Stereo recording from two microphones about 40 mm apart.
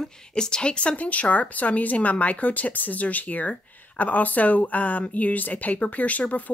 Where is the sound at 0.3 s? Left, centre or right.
Centre.